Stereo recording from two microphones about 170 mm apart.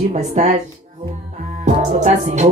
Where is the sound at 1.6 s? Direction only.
45° right (ahead or behind).